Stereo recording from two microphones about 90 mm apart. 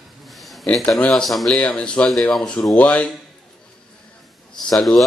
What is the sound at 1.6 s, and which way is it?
Speech, 15° left (ahead or behind).